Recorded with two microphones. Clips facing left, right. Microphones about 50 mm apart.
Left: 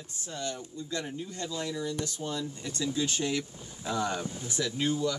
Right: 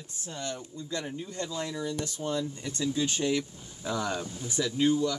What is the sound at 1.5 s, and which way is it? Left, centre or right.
Speech, centre.